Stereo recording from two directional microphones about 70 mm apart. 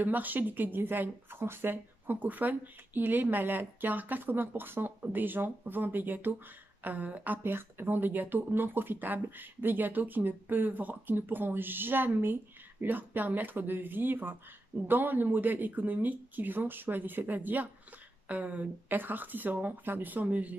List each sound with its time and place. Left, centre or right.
0.0 s speech: right